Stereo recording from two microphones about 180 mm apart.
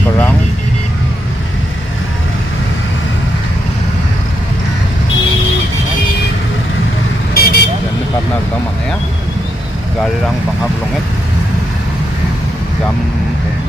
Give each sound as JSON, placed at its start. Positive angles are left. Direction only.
{"t": 7.3, "sound": "vehicle", "side_deg": 60}